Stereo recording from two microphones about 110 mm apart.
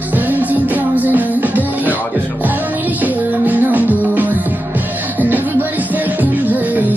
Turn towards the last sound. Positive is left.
turn(degrees=-15)  # may be behind; listen again after turning